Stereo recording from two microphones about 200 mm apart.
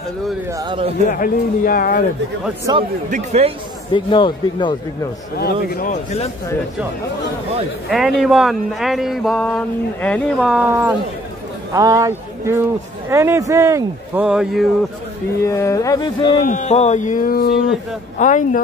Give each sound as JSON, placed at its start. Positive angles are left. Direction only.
{"t": 0.5, "sound": "speech", "side_deg": -20}
{"t": 1.1, "sound": "speech", "side_deg": 45}
{"t": 2.7, "sound": "speech", "side_deg": -20}
{"t": 3.1, "sound": "speech", "side_deg": -35}
{"t": 3.9, "sound": "a man's voice", "side_deg": 25}
{"t": 5.3, "sound": "speech", "side_deg": 50}
{"t": 7.9, "sound": "speech", "side_deg": 0}
{"t": 10.7, "sound": "speech", "side_deg": -10}
{"t": 14.2, "sound": "speech", "side_deg": -5}
{"t": 15.4, "sound": "music", "side_deg": 15}
{"t": 16.4, "sound": "speech", "side_deg": 35}